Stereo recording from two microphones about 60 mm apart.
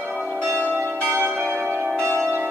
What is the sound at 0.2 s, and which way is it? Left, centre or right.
Change ringing, right.